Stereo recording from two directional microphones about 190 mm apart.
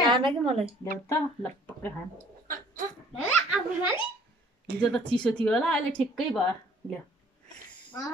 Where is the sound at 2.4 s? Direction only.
45° right (ahead or behind).